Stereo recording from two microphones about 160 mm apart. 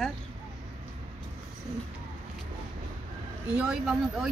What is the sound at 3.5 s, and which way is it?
Speech, 5° right (ahead or behind).